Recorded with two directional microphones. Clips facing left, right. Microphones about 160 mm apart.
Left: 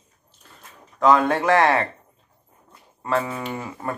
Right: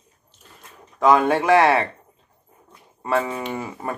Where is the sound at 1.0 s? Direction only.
15° right (ahead or behind).